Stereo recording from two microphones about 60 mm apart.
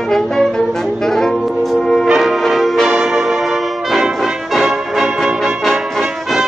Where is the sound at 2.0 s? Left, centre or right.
Centre.